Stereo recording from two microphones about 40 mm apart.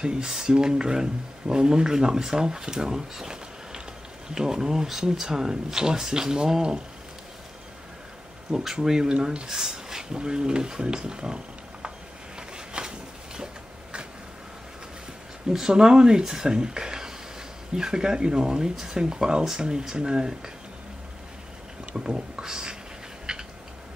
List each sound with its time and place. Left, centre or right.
0.5 s speech: centre
8.5 s speech: centre
12.4 s a sound: centre
15.5 s speech: centre
21.9 s speech: centre
23.3 s a sound: centre